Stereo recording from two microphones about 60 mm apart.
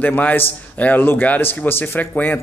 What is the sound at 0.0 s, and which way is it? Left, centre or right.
A man's voice, left.